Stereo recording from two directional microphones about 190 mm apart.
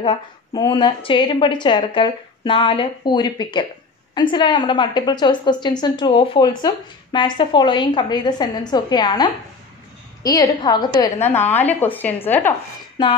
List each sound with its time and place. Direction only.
0.0 s a woman's voice: 25° left (ahead or behind)
11.2 s a woman's voice: 10° left (ahead or behind)
13.0 s a woman's voice: 25° left (ahead or behind)